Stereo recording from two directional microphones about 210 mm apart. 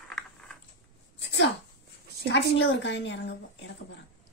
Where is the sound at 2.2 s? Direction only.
55° left (ahead or behind).